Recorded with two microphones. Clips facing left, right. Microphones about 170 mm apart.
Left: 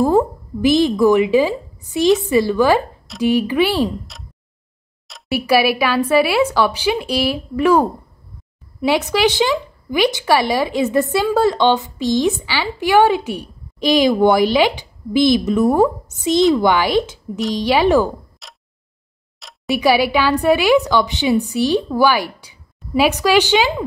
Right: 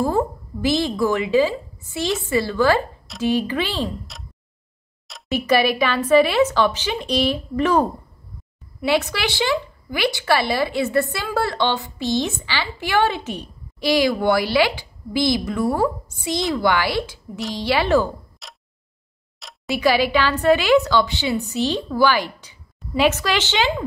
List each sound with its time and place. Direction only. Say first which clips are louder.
0.0 s a woman's voice: left 6 dB; 15° left (ahead or behind)
5.3 s a woman's voice: left 3 dB; 10° left (ahead or behind)
18.4 s a sound: even; centre (ahead or behind)
19.7 s a woman's voice: left 3 dB; 15° left (ahead or behind)